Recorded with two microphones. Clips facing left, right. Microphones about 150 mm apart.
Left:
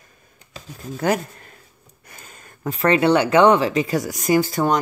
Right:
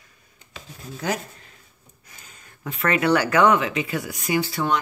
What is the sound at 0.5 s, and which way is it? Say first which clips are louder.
Rub: left 5 dB; 50° left (ahead or behind).